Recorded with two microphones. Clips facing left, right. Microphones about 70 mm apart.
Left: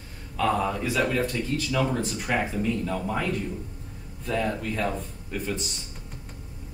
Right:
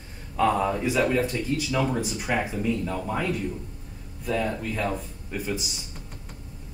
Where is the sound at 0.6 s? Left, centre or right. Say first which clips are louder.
Right 2 dB; centre.